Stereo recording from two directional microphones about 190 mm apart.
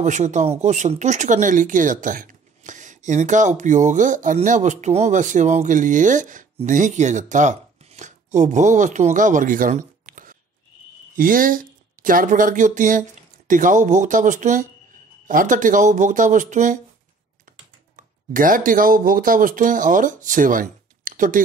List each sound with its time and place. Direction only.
0.0 s speech: 40° right (ahead or behind)
17.9 s speech: 45° right (ahead or behind)